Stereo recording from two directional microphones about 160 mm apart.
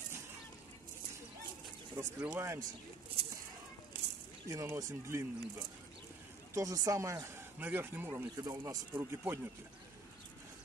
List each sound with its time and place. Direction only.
2.0 s speech: 20° right (ahead or behind)
4.5 s speech: 20° right (ahead or behind)
8.1 s speech: 20° right (ahead or behind)